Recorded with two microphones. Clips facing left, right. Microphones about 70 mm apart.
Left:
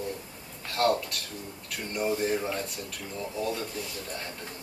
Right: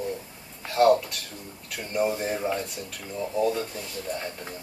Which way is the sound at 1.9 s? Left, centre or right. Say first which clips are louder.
Right 2 dB; centre.